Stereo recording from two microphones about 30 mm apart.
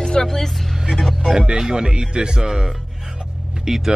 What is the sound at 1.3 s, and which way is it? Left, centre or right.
Speech, right.